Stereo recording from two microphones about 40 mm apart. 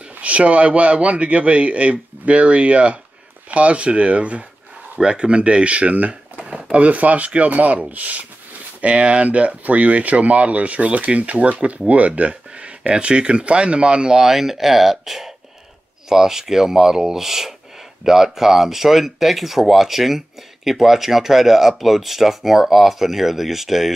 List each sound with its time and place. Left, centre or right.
0.1 s speech: right
8.8 s speech: right
14.2 s speech: centre